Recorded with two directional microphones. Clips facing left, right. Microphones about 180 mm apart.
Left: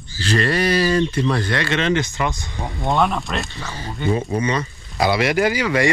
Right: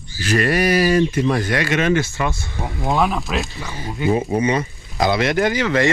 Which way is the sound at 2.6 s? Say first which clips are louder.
Even; centre (ahead or behind).